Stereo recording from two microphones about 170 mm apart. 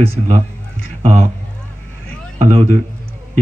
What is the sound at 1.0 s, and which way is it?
Speech, 45° right (ahead or behind).